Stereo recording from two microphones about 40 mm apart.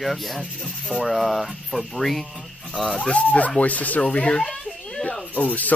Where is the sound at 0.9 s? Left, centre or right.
Right.